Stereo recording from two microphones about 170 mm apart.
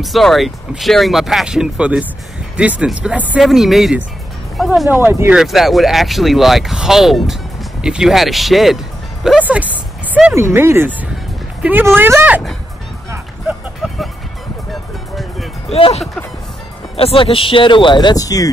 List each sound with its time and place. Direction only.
0.0 s speech: centre (ahead or behind)
4.8 s speech: 15° right (ahead or behind)
5.4 s speech: centre (ahead or behind)
15.7 s speech: 40° left (ahead or behind); by 18.5 s 20° left (ahead or behind)